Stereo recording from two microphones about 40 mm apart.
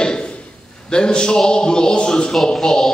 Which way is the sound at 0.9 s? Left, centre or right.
Left.